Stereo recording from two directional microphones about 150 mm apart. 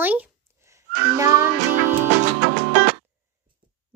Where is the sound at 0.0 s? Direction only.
10° right (ahead or behind).